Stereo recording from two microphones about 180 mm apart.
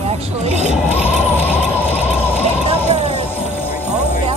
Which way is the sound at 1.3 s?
10° left (ahead or behind).